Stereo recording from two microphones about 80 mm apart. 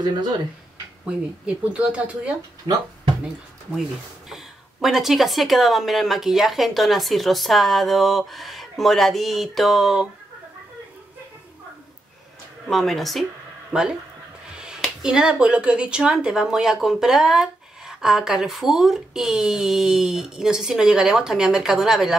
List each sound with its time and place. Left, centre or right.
1.0 s speech: centre
4.3 s speech: centre
12.6 s speech: centre
13.7 s speech: centre